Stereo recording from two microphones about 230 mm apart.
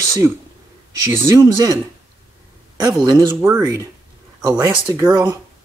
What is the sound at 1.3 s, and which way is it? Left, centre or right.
Speech, centre.